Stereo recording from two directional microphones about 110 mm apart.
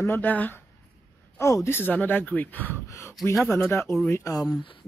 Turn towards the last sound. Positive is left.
turn(degrees=35)  # may be behind; listen again after turning